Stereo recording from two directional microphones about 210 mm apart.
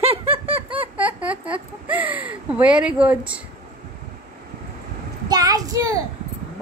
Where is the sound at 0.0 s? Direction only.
30° right (ahead or behind).